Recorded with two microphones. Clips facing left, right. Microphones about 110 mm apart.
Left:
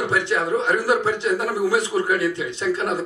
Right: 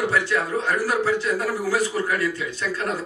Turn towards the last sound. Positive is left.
turn(degrees=20)  # may be behind; listen again after turning